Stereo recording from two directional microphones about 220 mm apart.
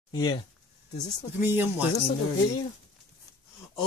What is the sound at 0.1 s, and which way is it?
Speech, 15° left (ahead or behind).